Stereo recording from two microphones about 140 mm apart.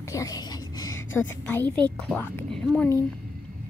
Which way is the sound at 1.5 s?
10° left (ahead or behind).